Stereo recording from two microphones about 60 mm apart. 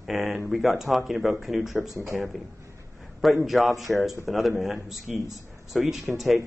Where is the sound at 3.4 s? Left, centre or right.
Centre.